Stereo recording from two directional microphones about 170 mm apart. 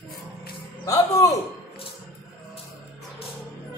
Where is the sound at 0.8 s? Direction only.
20° left (ahead or behind).